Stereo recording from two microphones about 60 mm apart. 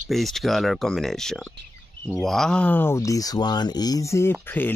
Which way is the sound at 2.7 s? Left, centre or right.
Left.